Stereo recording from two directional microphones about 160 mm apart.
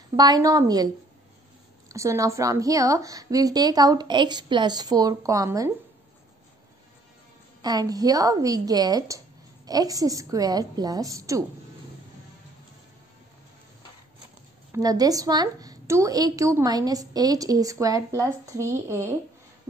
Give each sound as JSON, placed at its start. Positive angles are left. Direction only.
{"t": 0.1, "sound": "a woman's voice", "side_deg": -25}
{"t": 1.9, "sound": "a woman's voice", "side_deg": -20}
{"t": 7.6, "sound": "a woman's voice", "side_deg": -25}
{"t": 14.7, "sound": "a woman's voice", "side_deg": -20}